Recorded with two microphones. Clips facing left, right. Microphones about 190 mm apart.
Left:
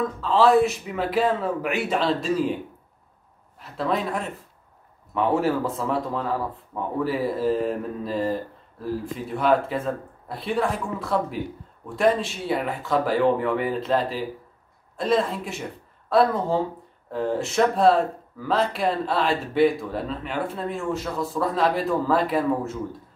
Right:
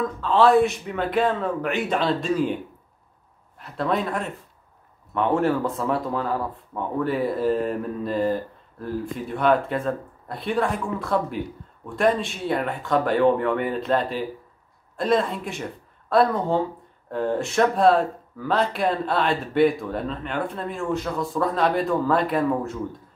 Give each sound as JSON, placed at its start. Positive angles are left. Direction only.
{"t": 0.2, "sound": "speech", "side_deg": 0}